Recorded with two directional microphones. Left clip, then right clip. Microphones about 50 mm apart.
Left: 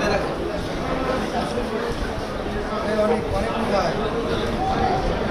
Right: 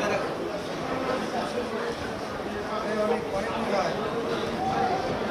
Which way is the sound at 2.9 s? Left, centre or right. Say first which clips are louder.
Left 6 dB; right.